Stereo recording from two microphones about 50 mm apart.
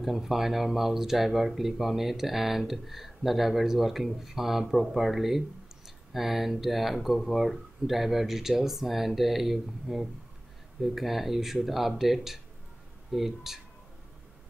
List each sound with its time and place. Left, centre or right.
0.0 s speech: centre